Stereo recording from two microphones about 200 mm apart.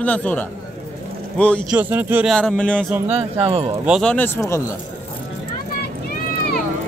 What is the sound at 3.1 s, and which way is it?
Speech, 30° right (ahead or behind).